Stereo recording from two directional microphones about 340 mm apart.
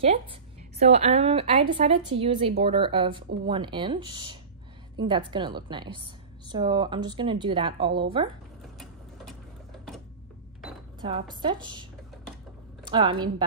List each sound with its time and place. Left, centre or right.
0.0 s a woman's voice: centre
11.0 s a woman's voice: centre
12.9 s a woman's voice: centre